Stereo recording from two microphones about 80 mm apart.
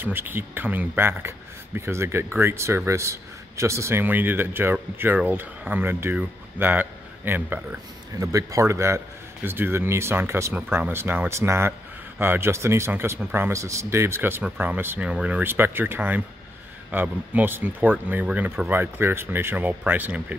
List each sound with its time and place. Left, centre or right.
0.0 s speech: right
4.0 s a man's voice: right
8.2 s speech: right
13.5 s speech: right
14.4 s speech: centre
15.0 s speech: centre
15.4 s speech: right